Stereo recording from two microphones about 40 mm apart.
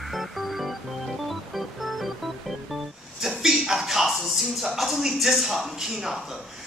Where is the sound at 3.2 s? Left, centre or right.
Centre.